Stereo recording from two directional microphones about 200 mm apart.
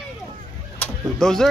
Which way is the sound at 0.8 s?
Centre (ahead or behind).